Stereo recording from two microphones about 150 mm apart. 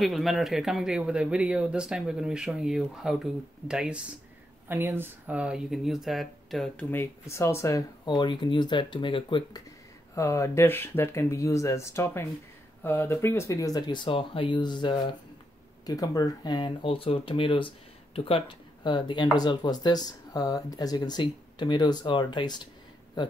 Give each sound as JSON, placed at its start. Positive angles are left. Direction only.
{"t": 0.0, "sound": "speech", "side_deg": 0}
{"t": 6.9, "sound": "speech", "side_deg": 15}
{"t": 10.1, "sound": "speech", "side_deg": 20}